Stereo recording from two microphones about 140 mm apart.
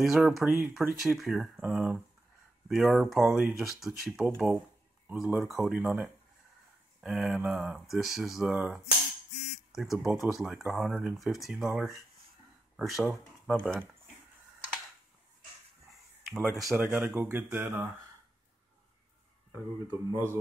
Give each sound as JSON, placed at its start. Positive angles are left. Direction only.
{"t": 0.0, "sound": "speech", "side_deg": 0}
{"t": 16.4, "sound": "speech", "side_deg": 0}
{"t": 16.7, "sound": "speech", "side_deg": -15}
{"t": 19.5, "sound": "speech", "side_deg": -15}